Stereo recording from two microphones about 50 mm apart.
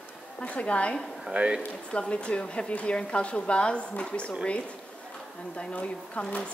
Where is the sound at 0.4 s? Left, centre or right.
Left.